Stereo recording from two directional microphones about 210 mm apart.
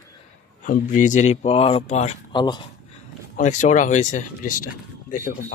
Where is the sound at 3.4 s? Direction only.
35° left (ahead or behind).